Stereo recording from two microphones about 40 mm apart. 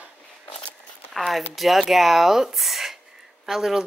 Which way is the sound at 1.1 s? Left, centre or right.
Centre.